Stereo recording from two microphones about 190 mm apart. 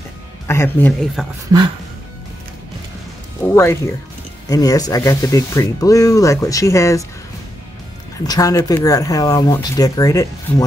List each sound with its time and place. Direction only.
0.5 s speech: 10° left (ahead or behind)
1.2 s speech: centre (ahead or behind)
3.4 s speech: 10° left (ahead or behind)
8.3 s speech: 20° left (ahead or behind)